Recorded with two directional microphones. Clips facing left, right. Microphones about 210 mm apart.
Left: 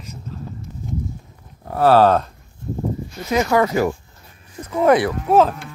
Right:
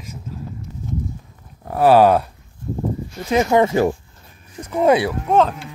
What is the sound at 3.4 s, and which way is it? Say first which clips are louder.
Speech: right 2 dB; 25° right (ahead or behind).